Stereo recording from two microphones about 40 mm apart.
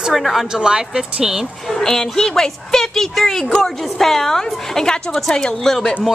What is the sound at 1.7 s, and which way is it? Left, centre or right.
A woman's voice, centre.